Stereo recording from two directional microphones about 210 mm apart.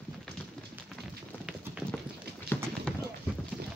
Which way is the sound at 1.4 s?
5° right (ahead or behind).